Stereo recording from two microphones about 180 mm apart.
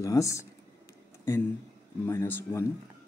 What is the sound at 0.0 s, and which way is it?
Speech, 20° left (ahead or behind).